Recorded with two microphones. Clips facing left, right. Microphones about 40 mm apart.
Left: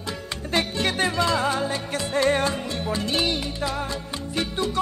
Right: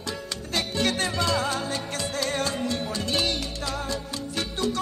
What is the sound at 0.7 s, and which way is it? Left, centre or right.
Music, centre.